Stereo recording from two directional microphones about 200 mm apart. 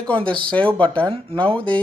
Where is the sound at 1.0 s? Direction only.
25° right (ahead or behind).